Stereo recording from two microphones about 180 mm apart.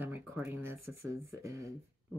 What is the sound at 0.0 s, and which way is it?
Speech, 10° right (ahead or behind).